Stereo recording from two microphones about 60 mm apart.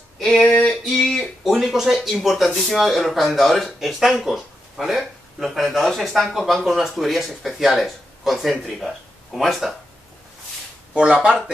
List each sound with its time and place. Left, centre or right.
0.2 s a sound: centre
1.4 s speech: centre
10.9 s speech: centre